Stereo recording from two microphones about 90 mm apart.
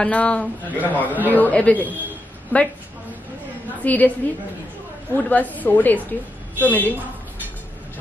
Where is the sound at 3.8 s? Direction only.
20° left (ahead or behind).